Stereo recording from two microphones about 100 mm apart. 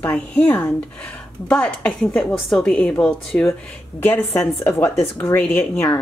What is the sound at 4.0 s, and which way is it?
A woman's voice, 20° left (ahead or behind).